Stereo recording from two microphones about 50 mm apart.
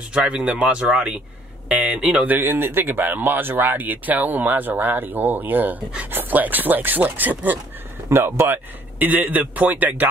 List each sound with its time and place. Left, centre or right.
0.1 s a man's voice: right
2.2 s speech: right
8.1 s speech: right
9.0 s speech: right